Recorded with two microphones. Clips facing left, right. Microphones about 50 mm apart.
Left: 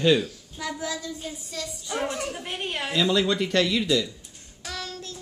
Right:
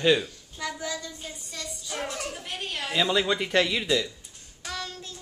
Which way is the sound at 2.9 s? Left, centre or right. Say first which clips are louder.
Left 1 dB; centre.